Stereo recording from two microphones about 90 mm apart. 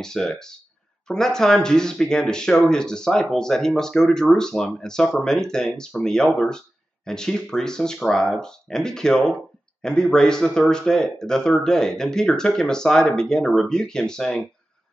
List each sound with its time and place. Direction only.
0.0 s speech: 5° left (ahead or behind)